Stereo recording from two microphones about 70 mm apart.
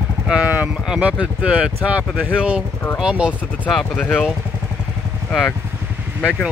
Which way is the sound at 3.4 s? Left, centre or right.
Left.